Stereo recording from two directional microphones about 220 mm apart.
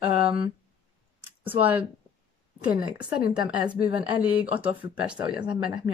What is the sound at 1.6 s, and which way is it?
Speech, 5° right (ahead or behind).